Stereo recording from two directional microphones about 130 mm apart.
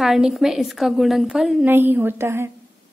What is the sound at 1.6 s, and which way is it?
Speech, 15° right (ahead or behind).